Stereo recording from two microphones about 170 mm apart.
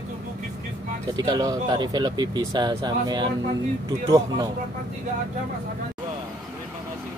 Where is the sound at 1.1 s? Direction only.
25° right (ahead or behind).